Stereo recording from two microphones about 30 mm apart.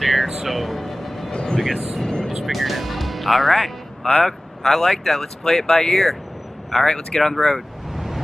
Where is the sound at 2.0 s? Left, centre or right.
Left.